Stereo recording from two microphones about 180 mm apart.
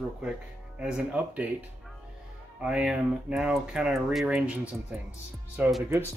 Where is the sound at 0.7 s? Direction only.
5° right (ahead or behind).